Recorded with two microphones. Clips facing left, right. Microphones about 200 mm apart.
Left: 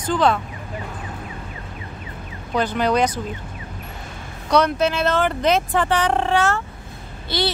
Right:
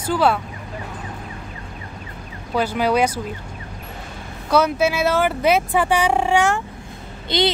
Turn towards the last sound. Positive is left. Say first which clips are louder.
# right 4 dB
turn(degrees=-20)  # may be behind; listen again after turning